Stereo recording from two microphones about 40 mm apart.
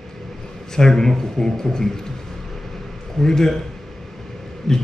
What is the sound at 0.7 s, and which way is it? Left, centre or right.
A man's voice, centre.